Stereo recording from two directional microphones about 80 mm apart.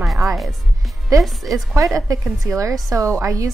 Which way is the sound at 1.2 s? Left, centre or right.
Centre.